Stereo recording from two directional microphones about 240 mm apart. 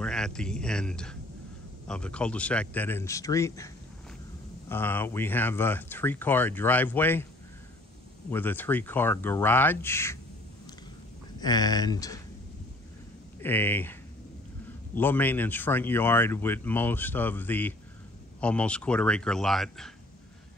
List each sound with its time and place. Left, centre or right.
0.0 s a man's voice: centre
8.3 s speech: centre
11.3 s speech: centre
13.4 s speech: centre
15.0 s speech: centre